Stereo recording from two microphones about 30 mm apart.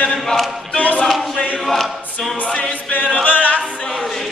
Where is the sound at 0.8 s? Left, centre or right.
Left.